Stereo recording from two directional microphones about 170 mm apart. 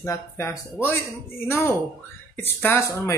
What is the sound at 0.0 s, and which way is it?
Speech, 15° left (ahead or behind).